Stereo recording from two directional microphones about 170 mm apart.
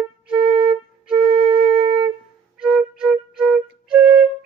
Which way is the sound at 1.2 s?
30° right (ahead or behind).